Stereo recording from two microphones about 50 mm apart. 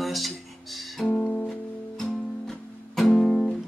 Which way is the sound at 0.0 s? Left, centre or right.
Centre.